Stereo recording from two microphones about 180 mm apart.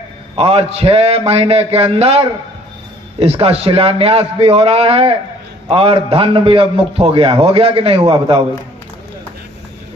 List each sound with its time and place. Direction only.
0.4 s a man's voice: 35° right (ahead or behind)